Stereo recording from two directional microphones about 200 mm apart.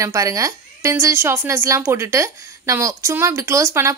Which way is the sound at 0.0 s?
15° right (ahead or behind).